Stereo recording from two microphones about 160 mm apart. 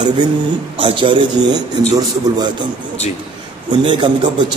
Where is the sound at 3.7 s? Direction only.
30° right (ahead or behind).